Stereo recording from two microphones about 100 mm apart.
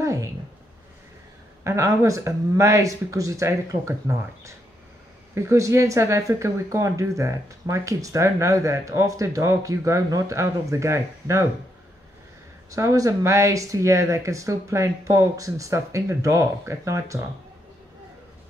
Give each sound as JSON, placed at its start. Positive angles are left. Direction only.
{"t": 0.0, "sound": "a sound", "side_deg": -30}
{"t": 1.6, "sound": "speech", "side_deg": -30}
{"t": 12.7, "sound": "speech", "side_deg": -35}